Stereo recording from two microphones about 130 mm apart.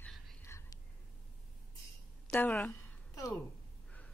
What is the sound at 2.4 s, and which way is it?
Speech, 10° left (ahead or behind).